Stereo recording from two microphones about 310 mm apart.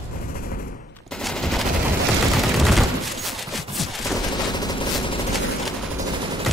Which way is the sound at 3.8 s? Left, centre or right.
Centre.